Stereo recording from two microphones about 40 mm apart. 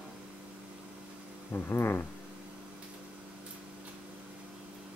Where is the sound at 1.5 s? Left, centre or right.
Left.